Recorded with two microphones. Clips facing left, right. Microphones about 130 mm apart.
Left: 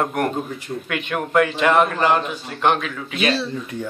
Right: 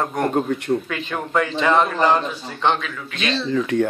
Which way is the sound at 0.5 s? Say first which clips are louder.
Right 8 dB; 65° right (ahead or behind).